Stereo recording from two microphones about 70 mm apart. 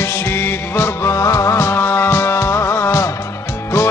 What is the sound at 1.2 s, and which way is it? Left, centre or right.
Music, left.